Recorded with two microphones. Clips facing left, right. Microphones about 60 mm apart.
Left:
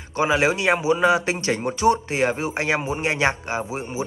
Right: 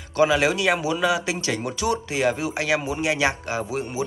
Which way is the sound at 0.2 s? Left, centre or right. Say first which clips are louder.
Right 1 dB; left.